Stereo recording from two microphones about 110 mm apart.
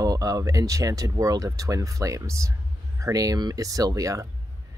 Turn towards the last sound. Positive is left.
turn(degrees=-30)  # may be behind; listen again after turning